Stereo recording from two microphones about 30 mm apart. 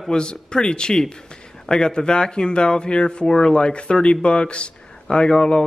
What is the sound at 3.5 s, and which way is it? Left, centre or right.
Speech, left.